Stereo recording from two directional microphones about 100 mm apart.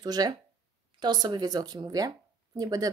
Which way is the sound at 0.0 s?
40° right (ahead or behind).